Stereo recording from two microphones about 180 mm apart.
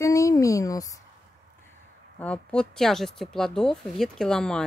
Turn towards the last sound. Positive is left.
turn(degrees=5)  # may be behind; listen again after turning